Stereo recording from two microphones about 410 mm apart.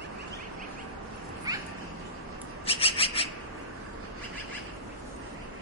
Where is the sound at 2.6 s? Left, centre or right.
Centre.